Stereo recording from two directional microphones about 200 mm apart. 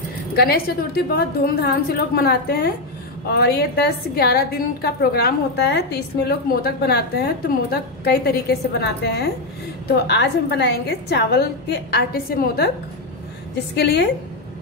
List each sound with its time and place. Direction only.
0.4 s a woman's voice: 50° left (ahead or behind)
10.0 s a woman's voice: 60° left (ahead or behind)
13.7 s a woman's voice: 55° left (ahead or behind)